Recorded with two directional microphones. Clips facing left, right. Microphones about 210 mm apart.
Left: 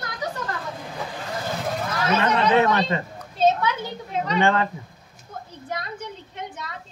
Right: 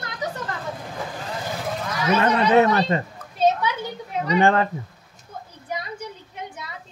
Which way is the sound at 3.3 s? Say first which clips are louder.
Even; 10° right (ahead or behind).